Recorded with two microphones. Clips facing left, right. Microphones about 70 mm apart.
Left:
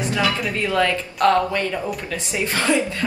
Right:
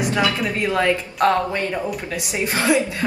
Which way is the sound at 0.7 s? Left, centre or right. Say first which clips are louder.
Right 1 dB; right.